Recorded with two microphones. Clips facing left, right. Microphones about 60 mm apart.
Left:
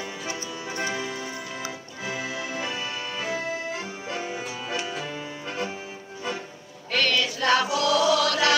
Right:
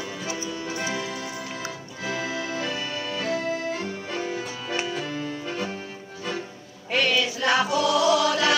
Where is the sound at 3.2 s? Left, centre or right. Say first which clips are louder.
Right 3 dB; centre.